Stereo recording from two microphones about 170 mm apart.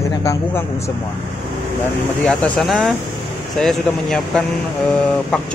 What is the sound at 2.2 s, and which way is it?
Speech, 5° left (ahead or behind).